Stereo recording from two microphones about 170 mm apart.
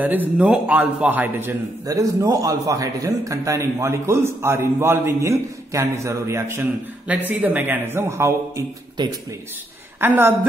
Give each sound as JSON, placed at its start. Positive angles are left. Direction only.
{"t": 0.0, "sound": "a man's voice", "side_deg": -10}
{"t": 9.0, "sound": "speech", "side_deg": -25}
{"t": 9.9, "sound": "a woman's voice", "side_deg": -10}